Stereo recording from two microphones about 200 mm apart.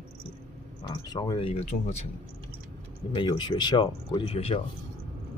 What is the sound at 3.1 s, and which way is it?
Speech, 25° left (ahead or behind).